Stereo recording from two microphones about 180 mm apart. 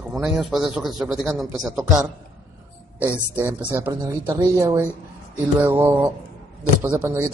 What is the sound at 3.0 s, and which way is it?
Speech, 10° right (ahead or behind).